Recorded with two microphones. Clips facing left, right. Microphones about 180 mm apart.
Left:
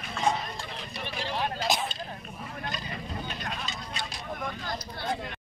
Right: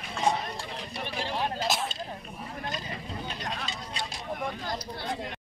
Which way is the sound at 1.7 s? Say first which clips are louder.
Left 4 dB; centre (ahead or behind).